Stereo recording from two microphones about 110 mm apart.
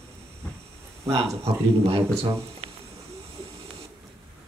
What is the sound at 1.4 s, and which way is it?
Speech, 65° right (ahead or behind).